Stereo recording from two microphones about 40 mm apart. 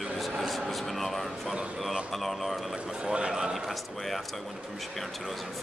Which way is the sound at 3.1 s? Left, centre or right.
Right.